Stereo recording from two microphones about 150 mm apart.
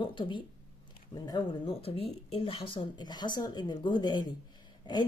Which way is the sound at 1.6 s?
40° left (ahead or behind).